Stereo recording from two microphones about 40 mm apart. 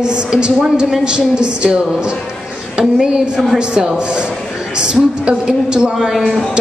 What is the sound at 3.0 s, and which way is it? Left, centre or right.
A woman's voice, centre.